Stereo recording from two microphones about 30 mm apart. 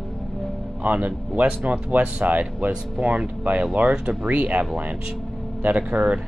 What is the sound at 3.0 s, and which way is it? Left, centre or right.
Speech, right.